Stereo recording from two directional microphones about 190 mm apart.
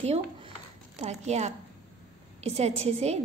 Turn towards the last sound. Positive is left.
turn(degrees=-35)  # may be behind; listen again after turning